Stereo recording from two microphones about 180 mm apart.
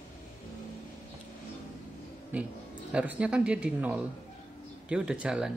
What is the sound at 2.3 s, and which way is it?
A woman's voice, 10° right (ahead or behind).